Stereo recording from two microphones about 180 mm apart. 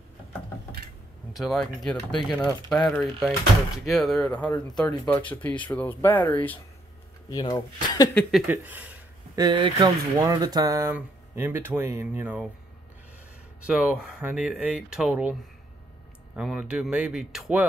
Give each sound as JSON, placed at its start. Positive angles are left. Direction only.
{"t": 1.3, "sound": "speech", "side_deg": 0}
{"t": 7.2, "sound": "speech", "side_deg": 20}
{"t": 8.1, "sound": "speech", "side_deg": 5}
{"t": 9.3, "sound": "speech", "side_deg": -25}
{"t": 13.6, "sound": "speech", "side_deg": -5}
{"t": 16.3, "sound": "speech", "side_deg": -5}